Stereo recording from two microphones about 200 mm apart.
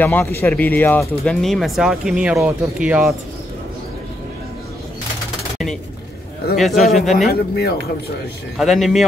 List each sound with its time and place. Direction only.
0.0 s speech: 10° left (ahead or behind)
6.5 s speech: centre (ahead or behind)
7.2 s speech: 50° left (ahead or behind)
8.5 s speech: centre (ahead or behind)